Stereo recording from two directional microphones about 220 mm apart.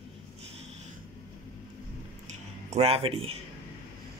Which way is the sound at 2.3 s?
30° right (ahead or behind).